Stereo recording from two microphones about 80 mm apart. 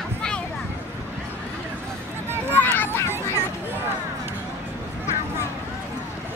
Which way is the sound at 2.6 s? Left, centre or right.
Left.